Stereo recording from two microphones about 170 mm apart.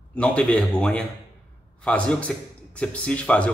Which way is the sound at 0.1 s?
5° left (ahead or behind).